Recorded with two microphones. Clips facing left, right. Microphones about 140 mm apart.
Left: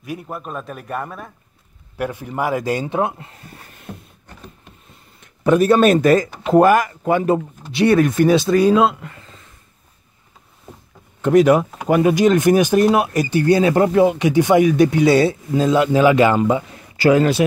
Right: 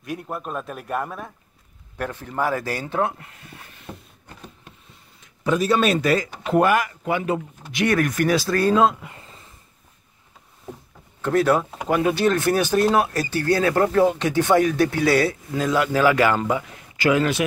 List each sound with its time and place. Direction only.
0.0 s a man's voice: centre (ahead or behind)
2.0 s speech: 10° left (ahead or behind)
5.2 s speech: 55° left (ahead or behind)
7.7 s speech: 30° left (ahead or behind); by 8.9 s 10° left (ahead or behind)
11.1 s speech: 15° left (ahead or behind); by 17.5 s 35° left (ahead or behind)